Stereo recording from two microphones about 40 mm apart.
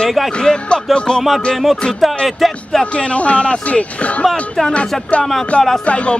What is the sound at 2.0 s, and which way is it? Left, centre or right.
Music, centre.